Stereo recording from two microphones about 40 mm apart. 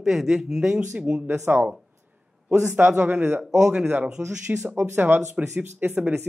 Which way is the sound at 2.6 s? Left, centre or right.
Right.